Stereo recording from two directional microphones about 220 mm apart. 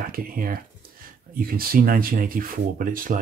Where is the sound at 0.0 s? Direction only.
40° right (ahead or behind).